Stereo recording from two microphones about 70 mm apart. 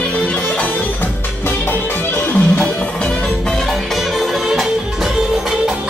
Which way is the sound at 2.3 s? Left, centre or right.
Centre.